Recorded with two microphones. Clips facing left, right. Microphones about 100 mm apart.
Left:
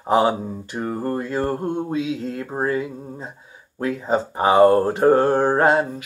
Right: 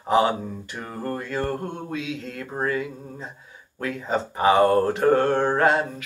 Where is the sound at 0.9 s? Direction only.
25° left (ahead or behind).